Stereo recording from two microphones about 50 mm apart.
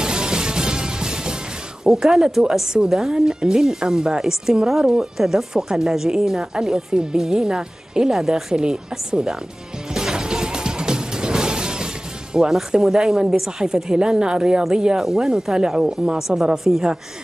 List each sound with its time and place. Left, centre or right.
0.0 s music: centre
1.9 s speech: centre
9.9 s music: centre
12.4 s speech: centre